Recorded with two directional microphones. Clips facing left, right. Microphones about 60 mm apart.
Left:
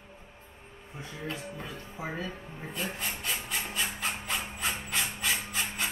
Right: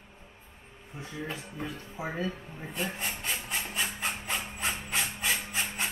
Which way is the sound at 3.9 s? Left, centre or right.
Right.